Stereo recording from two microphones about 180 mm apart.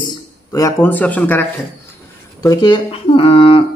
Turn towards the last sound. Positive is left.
turn(degrees=30)  # may be behind; listen again after turning